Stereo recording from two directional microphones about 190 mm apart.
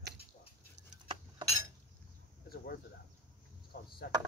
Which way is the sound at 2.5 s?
55° left (ahead or behind).